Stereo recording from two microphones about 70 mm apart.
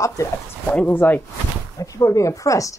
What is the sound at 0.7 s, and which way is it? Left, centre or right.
Speech, left.